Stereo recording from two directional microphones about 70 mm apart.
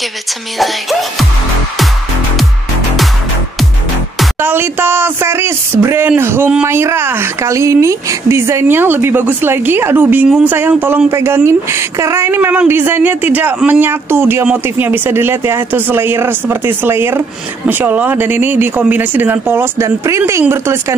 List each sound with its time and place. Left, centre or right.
4.4 s speech: right